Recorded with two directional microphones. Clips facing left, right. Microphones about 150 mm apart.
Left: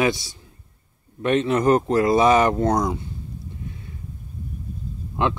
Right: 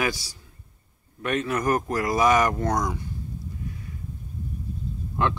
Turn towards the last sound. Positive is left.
turn(degrees=20)  # may be behind; listen again after turning